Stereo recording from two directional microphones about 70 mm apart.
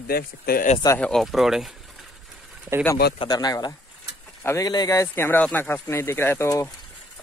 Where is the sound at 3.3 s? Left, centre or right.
Left.